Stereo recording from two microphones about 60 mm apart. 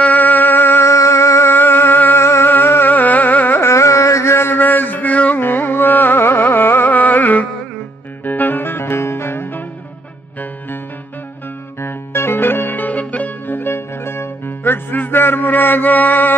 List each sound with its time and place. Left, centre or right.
0.0 s music: left
0.8 s music: left
1.5 s music: left
2.2 s music: left
2.5 s music: left
3.6 s carnatic music: left
4.6 s music: left
5.4 s music: left
11.8 s music: left